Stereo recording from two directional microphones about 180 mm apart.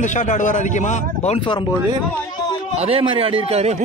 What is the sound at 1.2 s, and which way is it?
Speech, 30° left (ahead or behind).